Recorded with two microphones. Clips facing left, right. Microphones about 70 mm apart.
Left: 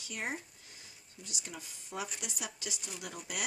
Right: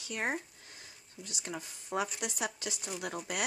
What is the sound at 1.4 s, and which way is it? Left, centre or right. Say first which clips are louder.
Speech: right 6 dB; right.